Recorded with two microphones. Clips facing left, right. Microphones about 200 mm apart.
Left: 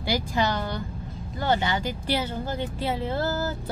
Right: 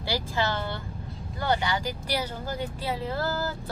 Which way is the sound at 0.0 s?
15° left (ahead or behind).